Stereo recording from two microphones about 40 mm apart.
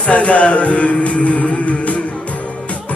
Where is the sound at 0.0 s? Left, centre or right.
Left.